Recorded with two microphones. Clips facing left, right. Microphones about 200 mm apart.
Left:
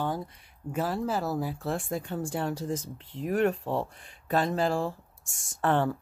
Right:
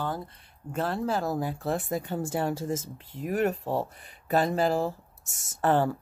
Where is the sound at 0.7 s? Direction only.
5° left (ahead or behind).